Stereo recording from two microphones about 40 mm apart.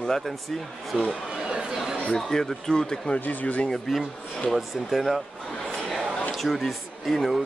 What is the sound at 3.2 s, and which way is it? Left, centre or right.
Speech, left.